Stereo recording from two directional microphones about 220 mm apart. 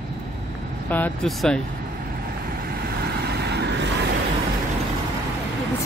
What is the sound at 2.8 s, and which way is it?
Vehicle, 45° right (ahead or behind).